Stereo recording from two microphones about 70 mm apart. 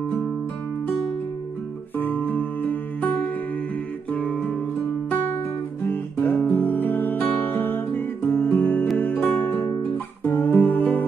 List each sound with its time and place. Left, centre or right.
2.0 s music: left
5.9 s guitar: left
8.9 s music: left